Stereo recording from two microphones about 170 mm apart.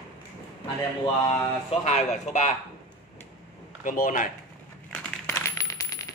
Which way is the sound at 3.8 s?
50° left (ahead or behind).